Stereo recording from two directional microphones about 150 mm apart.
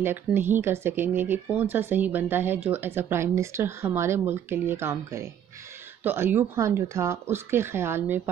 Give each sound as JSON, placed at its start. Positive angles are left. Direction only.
{"t": 0.0, "sound": "speech", "side_deg": -15}